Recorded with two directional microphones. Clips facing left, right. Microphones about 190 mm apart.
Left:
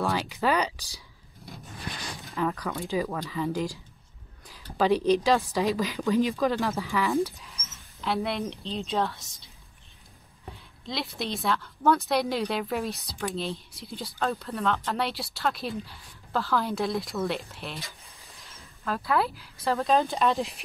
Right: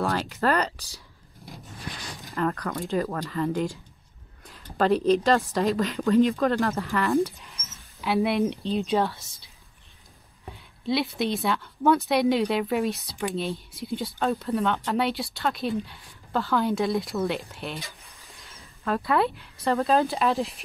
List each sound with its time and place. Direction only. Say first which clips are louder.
0.0 s speech: right 1 dB; centre (ahead or behind)
2.2 s speech: right 2 dB; centre (ahead or behind)
10.9 s speech: right 7 dB; centre (ahead or behind)